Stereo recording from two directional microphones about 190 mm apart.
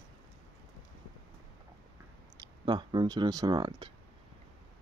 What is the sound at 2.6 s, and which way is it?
Speech, 25° right (ahead or behind).